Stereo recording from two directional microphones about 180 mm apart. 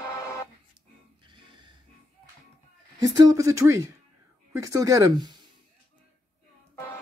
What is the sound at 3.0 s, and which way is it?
Speech, 20° right (ahead or behind).